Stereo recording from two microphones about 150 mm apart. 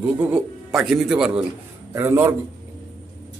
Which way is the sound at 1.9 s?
20° right (ahead or behind).